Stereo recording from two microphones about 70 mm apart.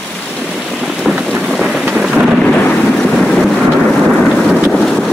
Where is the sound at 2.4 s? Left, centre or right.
Centre.